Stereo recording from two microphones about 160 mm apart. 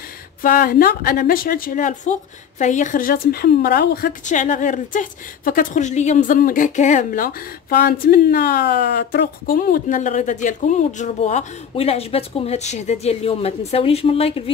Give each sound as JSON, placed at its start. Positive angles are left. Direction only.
{"t": 0.4, "sound": "a woman's voice", "side_deg": 65}